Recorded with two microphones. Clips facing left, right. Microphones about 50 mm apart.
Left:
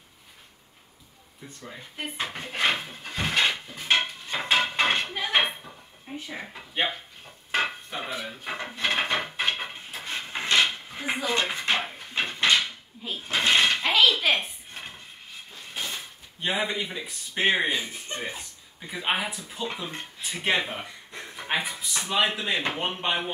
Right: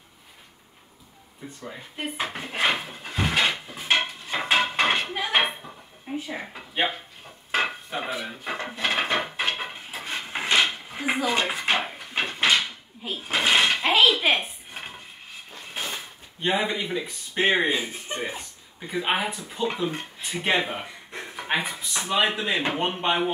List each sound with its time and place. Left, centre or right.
1.7 s dishes: centre
5.4 s music: centre
7.5 s cutlery: centre
8.6 s drawer open or close: centre
9.6 s dishes: centre
15.5 s a sound: right
16.3 s speech: centre
17.6 s speech: right
17.9 s speech: centre